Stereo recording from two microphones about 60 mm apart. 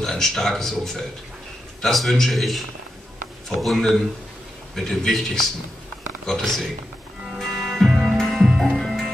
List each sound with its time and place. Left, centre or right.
0.0 s a man's voice: centre
7.3 s music: centre